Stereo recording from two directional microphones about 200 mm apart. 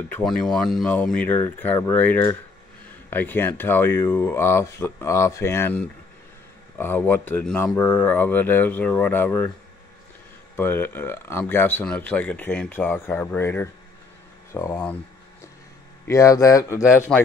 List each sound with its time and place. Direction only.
0.1 s speech: 5° left (ahead or behind)
10.5 s speech: 10° left (ahead or behind)
16.1 s speech: 15° left (ahead or behind)
17.1 s speech: 5° left (ahead or behind)